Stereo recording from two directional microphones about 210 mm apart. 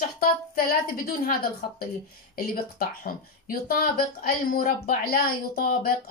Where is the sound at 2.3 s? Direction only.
40° left (ahead or behind).